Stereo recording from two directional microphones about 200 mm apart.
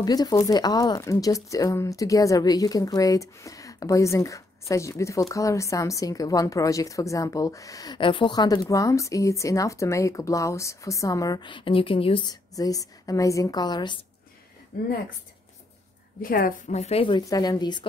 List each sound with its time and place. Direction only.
0.0 s speech: 20° left (ahead or behind)
14.7 s a woman's voice: 45° left (ahead or behind)
16.2 s a woman's voice: 45° left (ahead or behind); by 17.8 s 20° left (ahead or behind)